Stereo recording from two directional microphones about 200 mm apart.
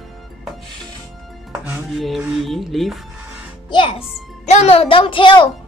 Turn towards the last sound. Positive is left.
turn(degrees=25)  # may be behind; listen again after turning